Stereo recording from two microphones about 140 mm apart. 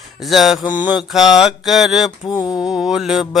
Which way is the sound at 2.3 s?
25° left (ahead or behind).